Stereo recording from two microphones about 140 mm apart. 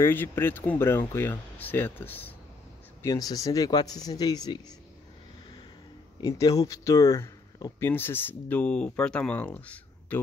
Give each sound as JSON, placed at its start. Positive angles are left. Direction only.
{"t": 0.0, "sound": "speech", "side_deg": 15}
{"t": 3.0, "sound": "speech", "side_deg": 25}
{"t": 6.2, "sound": "speech", "side_deg": 25}